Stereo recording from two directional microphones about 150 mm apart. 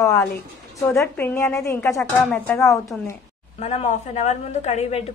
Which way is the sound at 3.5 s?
50° left (ahead or behind).